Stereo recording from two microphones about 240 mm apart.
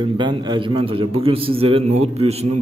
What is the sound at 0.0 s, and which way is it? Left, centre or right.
A man's voice, centre.